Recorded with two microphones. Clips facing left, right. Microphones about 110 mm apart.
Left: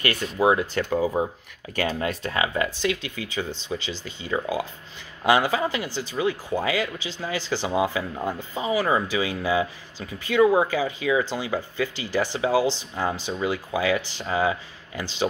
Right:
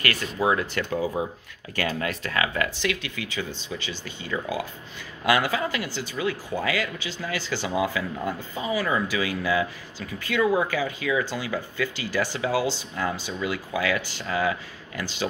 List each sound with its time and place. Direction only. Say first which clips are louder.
0.0 s speech: left 3 dB; 20° left (ahead or behind)
1.2 s speech: left 3 dB; 45° left (ahead or behind)
1.8 s speech: left 2 dB; 25° left (ahead or behind)